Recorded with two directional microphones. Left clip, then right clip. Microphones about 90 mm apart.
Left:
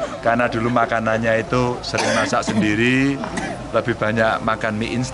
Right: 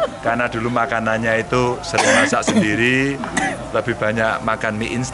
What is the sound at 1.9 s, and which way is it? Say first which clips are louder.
Speech: right 5 dB; 30° right (ahead or behind).